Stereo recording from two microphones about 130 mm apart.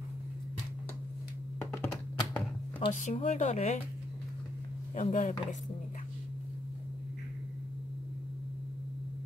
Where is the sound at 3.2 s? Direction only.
65° left (ahead or behind).